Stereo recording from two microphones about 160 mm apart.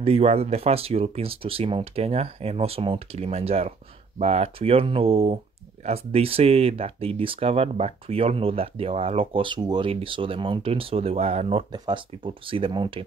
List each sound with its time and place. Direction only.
0.0 s speech: 40° right (ahead or behind)
11.7 s speech: 30° right (ahead or behind)